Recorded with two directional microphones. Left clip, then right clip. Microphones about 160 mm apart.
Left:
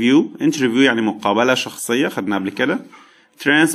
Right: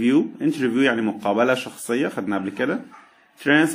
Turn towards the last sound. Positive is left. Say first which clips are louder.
# left 3 dB
turn(degrees=30)  # may be behind; listen again after turning